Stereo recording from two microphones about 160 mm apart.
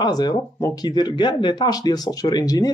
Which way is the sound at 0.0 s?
25° left (ahead or behind).